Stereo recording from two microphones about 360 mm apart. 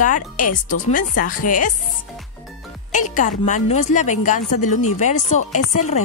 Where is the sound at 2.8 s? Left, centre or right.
Left.